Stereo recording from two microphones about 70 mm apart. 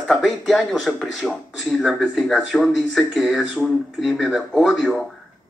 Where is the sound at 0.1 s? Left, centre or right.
Centre.